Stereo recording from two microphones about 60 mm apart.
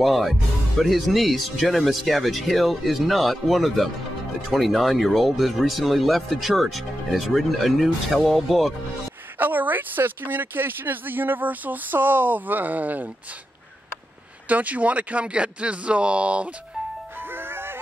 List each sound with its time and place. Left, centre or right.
0.0 s speech: centre
9.4 s speech: right
14.5 s speech: right
17.3 s music: right